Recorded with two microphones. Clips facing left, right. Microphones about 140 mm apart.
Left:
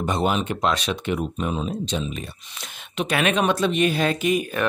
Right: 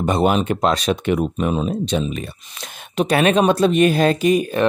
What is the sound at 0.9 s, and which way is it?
Speech, 65° right (ahead or behind).